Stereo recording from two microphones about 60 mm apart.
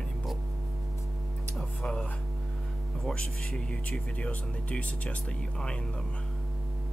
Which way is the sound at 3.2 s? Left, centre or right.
Centre.